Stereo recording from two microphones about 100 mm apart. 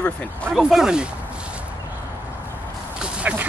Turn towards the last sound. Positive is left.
turn(degrees=-15)  # may be behind; listen again after turning